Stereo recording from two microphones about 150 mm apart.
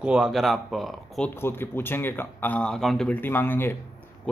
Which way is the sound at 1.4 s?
15° left (ahead or behind).